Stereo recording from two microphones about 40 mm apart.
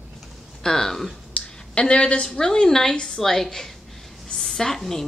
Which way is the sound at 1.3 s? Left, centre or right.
Left.